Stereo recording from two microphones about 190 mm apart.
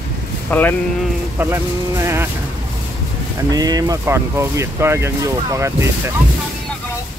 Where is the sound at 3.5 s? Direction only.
20° right (ahead or behind).